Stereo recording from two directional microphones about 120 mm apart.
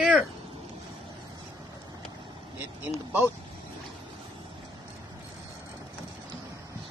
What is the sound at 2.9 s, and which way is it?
Speech, 15° right (ahead or behind).